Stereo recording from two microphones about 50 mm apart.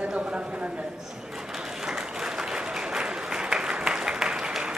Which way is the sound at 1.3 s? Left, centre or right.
Centre.